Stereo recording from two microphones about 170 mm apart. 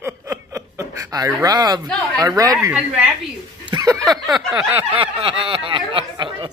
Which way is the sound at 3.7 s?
20° right (ahead or behind).